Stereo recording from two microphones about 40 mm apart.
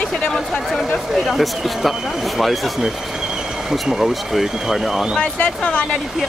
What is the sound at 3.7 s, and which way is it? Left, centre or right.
Speech, centre.